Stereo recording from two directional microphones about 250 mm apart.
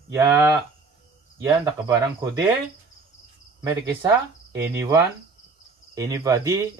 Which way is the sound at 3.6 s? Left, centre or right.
Centre.